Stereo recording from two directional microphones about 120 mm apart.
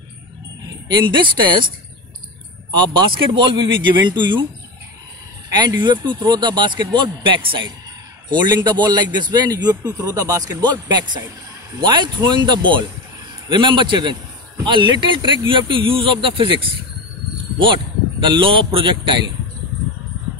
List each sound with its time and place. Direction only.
0.9 s speech: 40° right (ahead or behind)
2.7 s speech: 40° right (ahead or behind)
5.6 s speech: 40° right (ahead or behind)
18.2 s speech: 45° right (ahead or behind)